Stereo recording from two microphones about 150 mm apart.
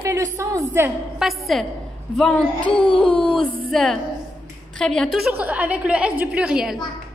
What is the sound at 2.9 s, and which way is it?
Speech, 35° left (ahead or behind).